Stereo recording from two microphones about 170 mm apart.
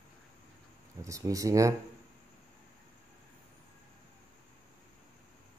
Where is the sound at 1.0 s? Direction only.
20° right (ahead or behind).